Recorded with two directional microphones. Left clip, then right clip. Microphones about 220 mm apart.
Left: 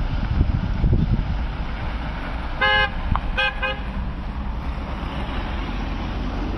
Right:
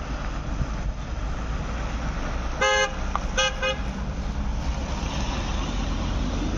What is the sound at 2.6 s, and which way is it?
Car, 20° right (ahead or behind).